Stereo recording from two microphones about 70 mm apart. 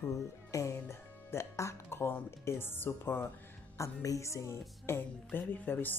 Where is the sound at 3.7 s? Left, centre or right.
Left.